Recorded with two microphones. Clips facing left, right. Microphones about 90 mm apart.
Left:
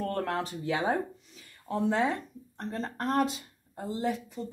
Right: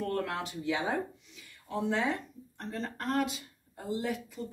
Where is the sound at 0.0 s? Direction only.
40° left (ahead or behind).